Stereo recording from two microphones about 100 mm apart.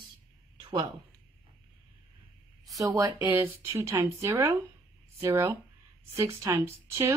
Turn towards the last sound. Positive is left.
turn(degrees=-25)  # may be behind; listen again after turning